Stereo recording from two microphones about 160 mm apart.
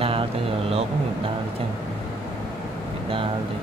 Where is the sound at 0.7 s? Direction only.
40° right (ahead or behind).